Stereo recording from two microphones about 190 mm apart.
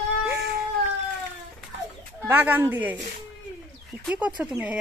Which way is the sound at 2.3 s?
10° right (ahead or behind).